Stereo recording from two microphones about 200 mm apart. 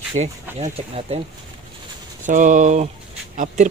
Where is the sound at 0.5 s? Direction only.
30° right (ahead or behind).